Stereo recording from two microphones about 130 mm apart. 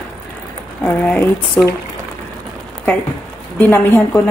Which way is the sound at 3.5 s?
15° left (ahead or behind).